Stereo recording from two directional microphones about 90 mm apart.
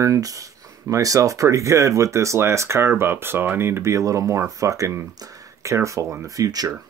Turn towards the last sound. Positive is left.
turn(degrees=-40)  # may be behind; listen again after turning